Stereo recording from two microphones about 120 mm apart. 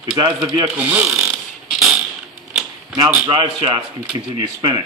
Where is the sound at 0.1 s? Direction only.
35° right (ahead or behind).